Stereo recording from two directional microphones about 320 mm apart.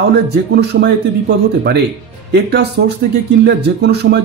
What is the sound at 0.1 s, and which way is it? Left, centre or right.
Speech, right.